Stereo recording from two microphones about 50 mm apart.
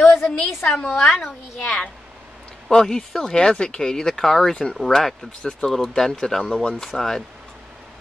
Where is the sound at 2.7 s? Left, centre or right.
Centre.